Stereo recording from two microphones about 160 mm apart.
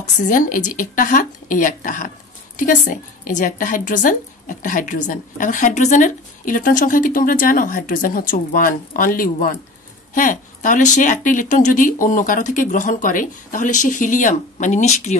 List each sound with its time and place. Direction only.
0.0 s a woman's voice: 55° left (ahead or behind)